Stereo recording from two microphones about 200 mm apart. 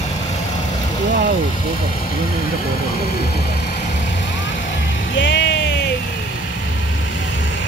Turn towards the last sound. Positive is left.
turn(degrees=60)  # may be behind; listen again after turning